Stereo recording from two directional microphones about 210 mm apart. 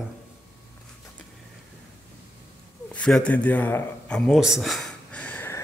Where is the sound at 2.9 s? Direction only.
5° left (ahead or behind).